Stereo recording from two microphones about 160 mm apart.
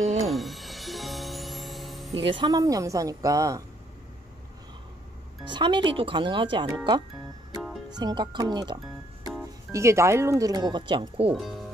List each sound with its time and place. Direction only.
0.3 s music: centre (ahead or behind)
2.1 s speech: 30° right (ahead or behind)
5.5 s speech: 30° right (ahead or behind)